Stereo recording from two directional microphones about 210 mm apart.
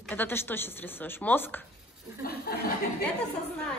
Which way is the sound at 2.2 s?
45° left (ahead or behind).